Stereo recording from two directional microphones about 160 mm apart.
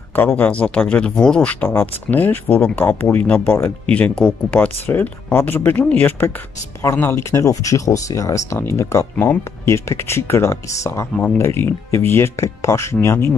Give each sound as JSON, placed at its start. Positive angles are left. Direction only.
{"t": 0.1, "sound": "speech", "side_deg": 10}